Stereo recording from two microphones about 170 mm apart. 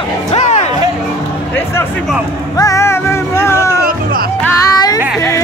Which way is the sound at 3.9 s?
55° right (ahead or behind).